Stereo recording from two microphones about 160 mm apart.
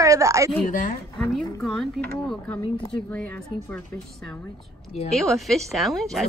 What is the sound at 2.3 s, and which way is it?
Speech, 10° left (ahead or behind).